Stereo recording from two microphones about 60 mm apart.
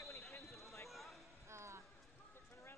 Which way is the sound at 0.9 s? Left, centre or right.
Centre.